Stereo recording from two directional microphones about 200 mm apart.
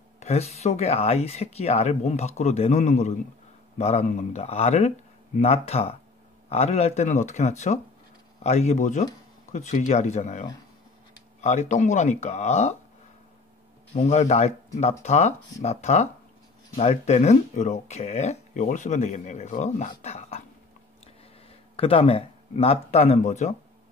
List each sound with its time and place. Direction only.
0.2 s speech: 30° left (ahead or behind)
11.4 s speech: 35° left (ahead or behind)
13.9 s speech: 35° left (ahead or behind)
21.7 s speech: 30° left (ahead or behind)